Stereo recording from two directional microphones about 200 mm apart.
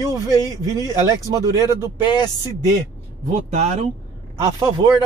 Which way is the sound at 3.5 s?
35° right (ahead or behind).